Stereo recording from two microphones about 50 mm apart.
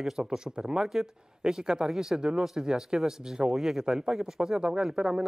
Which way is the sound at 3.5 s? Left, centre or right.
Centre.